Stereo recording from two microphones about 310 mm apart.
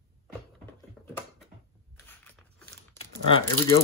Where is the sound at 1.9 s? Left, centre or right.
Centre.